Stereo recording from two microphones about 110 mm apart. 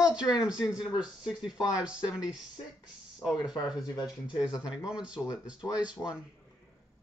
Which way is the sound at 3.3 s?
40° left (ahead or behind).